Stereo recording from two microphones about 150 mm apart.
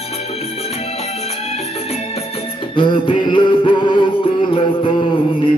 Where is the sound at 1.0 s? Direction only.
45° left (ahead or behind).